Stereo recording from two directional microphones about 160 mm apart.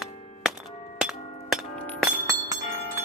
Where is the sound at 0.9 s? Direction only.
5° right (ahead or behind).